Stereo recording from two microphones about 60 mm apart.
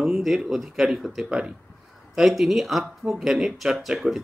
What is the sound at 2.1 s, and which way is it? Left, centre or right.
Speech, centre.